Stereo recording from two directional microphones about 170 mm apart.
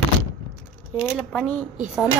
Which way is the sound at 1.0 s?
Centre (ahead or behind).